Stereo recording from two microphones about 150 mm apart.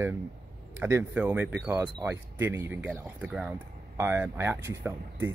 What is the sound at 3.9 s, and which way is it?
Speech, 20° right (ahead or behind).